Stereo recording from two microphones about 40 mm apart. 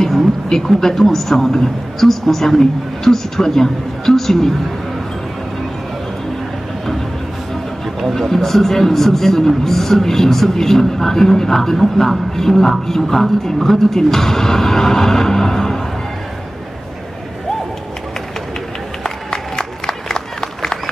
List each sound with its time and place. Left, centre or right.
0.5 s speech: centre
8.0 s speech: centre
19.0 s a sound: centre